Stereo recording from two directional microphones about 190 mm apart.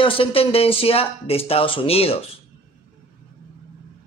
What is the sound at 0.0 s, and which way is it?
Speech, 30° left (ahead or behind).